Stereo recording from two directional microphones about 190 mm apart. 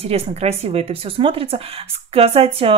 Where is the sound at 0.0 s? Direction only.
30° right (ahead or behind).